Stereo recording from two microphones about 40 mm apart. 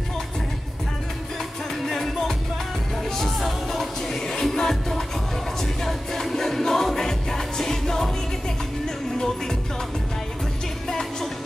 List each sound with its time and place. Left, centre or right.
1.9 s music: centre
10.9 s music: centre